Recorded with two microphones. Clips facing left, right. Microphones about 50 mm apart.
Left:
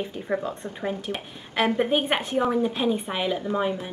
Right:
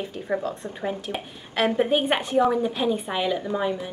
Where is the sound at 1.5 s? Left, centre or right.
Centre.